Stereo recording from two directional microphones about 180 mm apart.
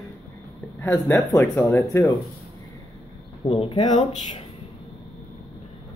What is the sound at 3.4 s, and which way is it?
Speech, 35° left (ahead or behind).